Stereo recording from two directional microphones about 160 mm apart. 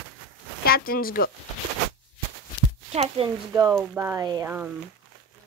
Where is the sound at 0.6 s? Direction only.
65° left (ahead or behind).